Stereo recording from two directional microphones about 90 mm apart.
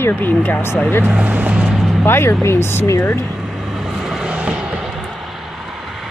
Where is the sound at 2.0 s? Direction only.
25° left (ahead or behind).